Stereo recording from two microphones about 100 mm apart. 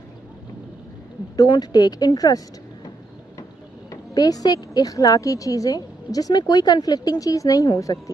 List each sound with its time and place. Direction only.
1.3 s speech: 40° left (ahead or behind)
3.9 s speech: 40° left (ahead or behind)